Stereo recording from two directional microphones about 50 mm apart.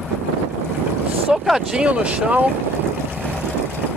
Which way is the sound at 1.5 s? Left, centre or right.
Right.